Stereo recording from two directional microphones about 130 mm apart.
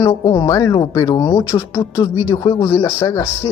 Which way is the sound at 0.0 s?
30° left (ahead or behind).